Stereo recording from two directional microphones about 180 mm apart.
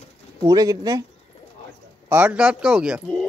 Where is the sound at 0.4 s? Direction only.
20° right (ahead or behind).